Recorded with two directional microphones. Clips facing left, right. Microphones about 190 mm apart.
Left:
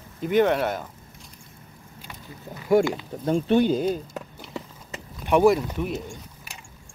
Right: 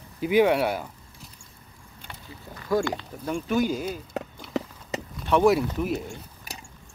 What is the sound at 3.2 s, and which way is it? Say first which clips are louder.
Speech: left 5 dB; 30° left (ahead or behind).